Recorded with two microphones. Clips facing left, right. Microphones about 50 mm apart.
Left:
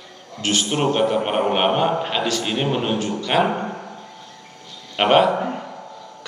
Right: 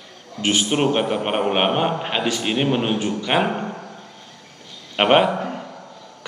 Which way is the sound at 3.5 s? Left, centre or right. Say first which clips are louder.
Left 1 dB; centre.